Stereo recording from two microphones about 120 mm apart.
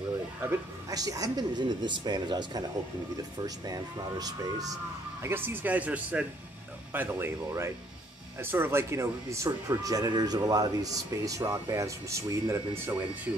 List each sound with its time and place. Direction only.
0.5 s speech: 30° right (ahead or behind)
5.2 s speech: 20° right (ahead or behind)